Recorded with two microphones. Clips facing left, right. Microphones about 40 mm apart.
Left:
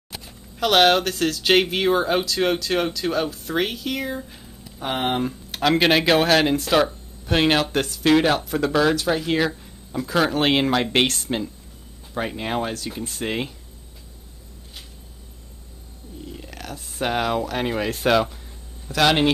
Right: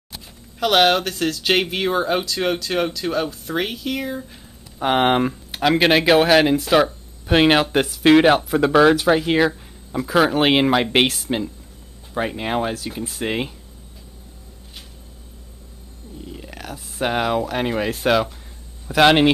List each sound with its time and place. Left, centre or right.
0.2 s speech: centre
4.8 s speech: right
5.3 s speech: centre
16.3 s speech: centre
18.9 s speech: centre